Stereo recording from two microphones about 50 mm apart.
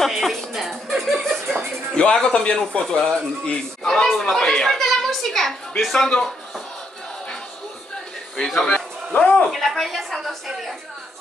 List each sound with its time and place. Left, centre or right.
0.0 s speech: centre
1.9 s a sound: centre
2.1 s speech: centre
4.4 s speech: centre
4.6 s a woman's voice: centre
8.5 s speech: centre
9.5 s a woman's voice: centre